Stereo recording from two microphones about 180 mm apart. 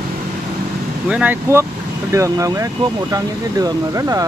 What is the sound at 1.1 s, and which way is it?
Speech, 10° right (ahead or behind).